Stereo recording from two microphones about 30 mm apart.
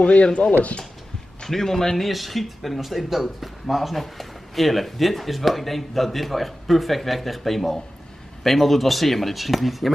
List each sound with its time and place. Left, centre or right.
0.0 s speech: left
1.4 s a man's voice: centre
2.0 s speech: centre